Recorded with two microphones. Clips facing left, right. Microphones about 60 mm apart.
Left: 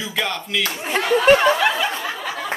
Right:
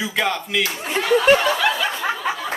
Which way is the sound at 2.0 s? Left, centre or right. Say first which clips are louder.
Right 4 dB; right.